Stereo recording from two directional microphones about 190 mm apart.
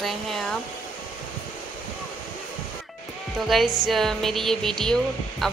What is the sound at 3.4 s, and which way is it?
Speech, centre (ahead or behind).